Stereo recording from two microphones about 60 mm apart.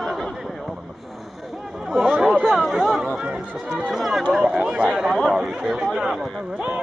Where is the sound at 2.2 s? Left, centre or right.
Centre.